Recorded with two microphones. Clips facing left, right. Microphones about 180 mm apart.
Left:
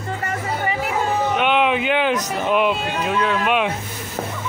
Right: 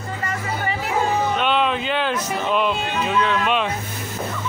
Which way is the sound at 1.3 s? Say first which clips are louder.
Left 2 dB; 15° left (ahead or behind).